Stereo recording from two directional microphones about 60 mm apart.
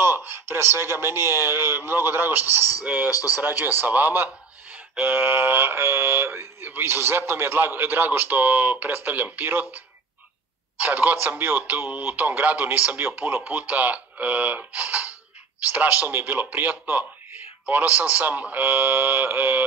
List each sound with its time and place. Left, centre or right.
0.0 s speech: right
3.1 s speech: left
3.3 s speech: right
10.8 s speech: right